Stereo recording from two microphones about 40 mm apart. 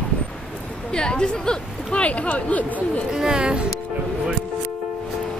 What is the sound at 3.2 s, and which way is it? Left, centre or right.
Speech, centre.